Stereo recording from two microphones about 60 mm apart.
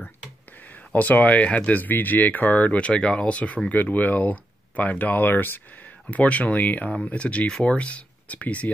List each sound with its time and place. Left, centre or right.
0.6 s speech: left
6.0 s speech: left